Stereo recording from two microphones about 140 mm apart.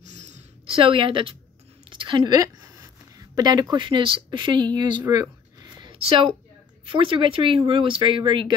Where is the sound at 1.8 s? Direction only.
35° right (ahead or behind).